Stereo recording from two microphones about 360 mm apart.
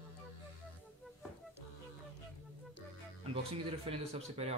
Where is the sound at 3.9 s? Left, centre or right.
Centre.